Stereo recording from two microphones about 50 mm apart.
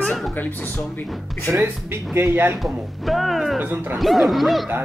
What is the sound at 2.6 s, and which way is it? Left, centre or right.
Speech, centre.